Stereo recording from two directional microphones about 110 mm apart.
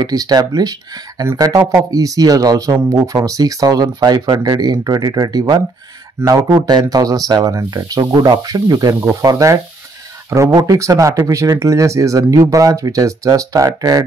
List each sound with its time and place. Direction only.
0.0 s speech: 35° right (ahead or behind)
10.6 s speech: 30° right (ahead or behind)